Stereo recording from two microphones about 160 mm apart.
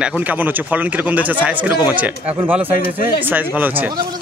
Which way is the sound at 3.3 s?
10° right (ahead or behind).